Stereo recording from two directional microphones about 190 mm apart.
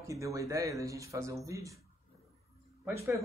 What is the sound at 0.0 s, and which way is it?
Speech, 15° right (ahead or behind).